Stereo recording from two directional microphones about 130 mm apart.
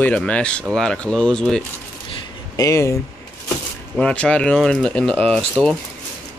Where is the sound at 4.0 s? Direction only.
10° left (ahead or behind).